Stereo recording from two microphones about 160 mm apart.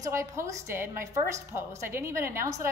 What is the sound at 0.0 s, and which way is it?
A woman's voice, 20° right (ahead or behind).